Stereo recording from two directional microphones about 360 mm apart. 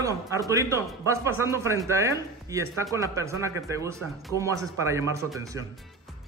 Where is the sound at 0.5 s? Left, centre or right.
Centre.